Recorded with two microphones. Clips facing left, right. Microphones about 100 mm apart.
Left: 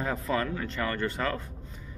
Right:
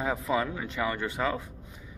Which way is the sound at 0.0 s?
10° right (ahead or behind).